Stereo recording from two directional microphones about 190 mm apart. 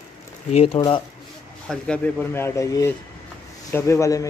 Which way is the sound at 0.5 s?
35° left (ahead or behind).